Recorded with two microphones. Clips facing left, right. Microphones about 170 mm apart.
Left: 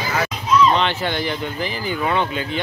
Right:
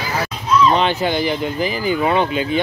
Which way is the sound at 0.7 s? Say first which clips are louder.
Right 3 dB; 10° right (ahead or behind).